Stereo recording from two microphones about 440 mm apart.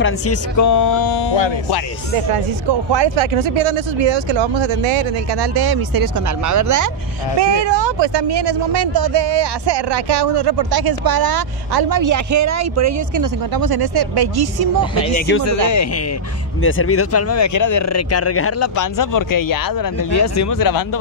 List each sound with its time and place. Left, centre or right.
0.0 s speech: left
2.7 s speech: right
7.6 s speech: right
15.0 s speech: centre
15.4 s speech: left
18.8 s speech: left